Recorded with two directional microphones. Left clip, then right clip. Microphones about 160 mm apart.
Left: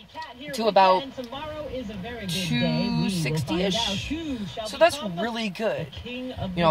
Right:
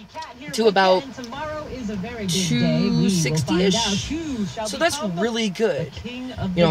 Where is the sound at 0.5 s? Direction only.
5° right (ahead or behind).